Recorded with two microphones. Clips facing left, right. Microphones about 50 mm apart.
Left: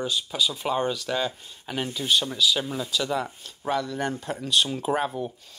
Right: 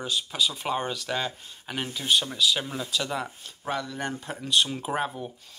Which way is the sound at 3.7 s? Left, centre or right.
Right.